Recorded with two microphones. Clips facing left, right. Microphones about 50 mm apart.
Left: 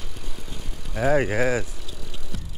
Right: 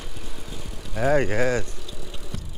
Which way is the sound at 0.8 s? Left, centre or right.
Centre.